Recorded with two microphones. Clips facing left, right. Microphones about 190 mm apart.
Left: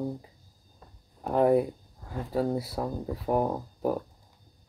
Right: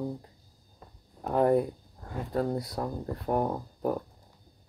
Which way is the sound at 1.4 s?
5° left (ahead or behind).